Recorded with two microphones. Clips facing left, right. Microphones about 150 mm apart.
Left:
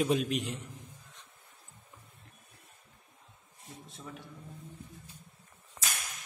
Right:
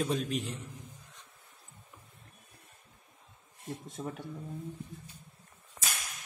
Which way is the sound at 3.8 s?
50° right (ahead or behind).